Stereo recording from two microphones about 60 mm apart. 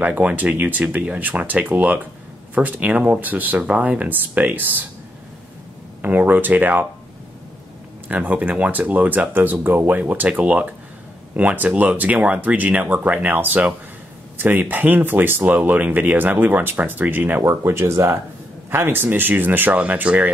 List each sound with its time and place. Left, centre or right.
0.0 s speech: right
6.0 s speech: right
8.1 s speech: right
17.4 s speech: right
18.7 s speech: right